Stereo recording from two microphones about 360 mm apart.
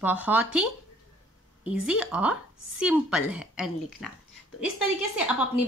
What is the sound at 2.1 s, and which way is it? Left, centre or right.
Speech, centre.